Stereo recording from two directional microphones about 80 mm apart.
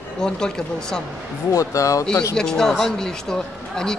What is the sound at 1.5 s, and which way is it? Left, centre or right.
Speech, left.